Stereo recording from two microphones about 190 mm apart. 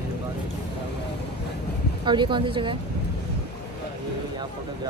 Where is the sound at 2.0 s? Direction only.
25° right (ahead or behind).